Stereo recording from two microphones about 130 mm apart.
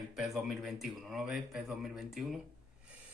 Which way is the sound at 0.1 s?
5° right (ahead or behind).